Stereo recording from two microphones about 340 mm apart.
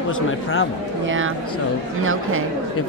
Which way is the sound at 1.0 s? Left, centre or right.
Right.